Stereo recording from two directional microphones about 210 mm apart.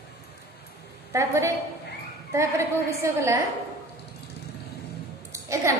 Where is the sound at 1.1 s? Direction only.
15° right (ahead or behind).